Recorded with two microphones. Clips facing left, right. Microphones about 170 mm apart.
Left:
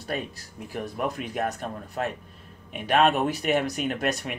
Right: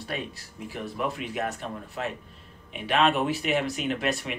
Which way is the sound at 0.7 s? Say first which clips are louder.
Left 2 dB; 45° left (ahead or behind).